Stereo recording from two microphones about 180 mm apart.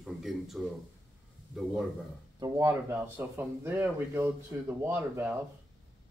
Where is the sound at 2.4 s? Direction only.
15° right (ahead or behind).